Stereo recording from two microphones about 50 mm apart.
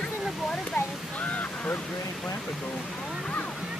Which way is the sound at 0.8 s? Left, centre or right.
Left.